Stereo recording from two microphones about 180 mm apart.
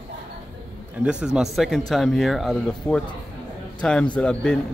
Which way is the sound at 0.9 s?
5° right (ahead or behind).